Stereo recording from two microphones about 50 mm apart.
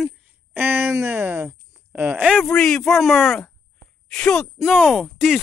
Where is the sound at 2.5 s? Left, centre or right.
Centre.